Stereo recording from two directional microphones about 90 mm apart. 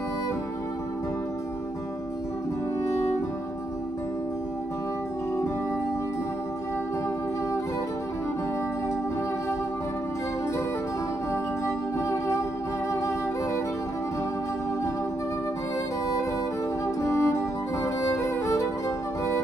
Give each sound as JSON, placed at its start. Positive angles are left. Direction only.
{"t": 11.6, "sound": "music", "side_deg": 35}
{"t": 16.8, "sound": "music", "side_deg": 35}